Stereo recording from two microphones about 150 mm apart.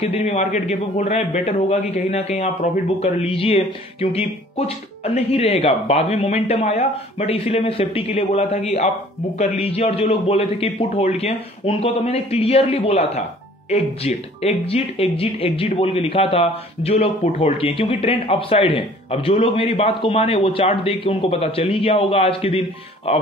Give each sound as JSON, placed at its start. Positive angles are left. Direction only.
{"t": 0.0, "sound": "speech", "side_deg": 45}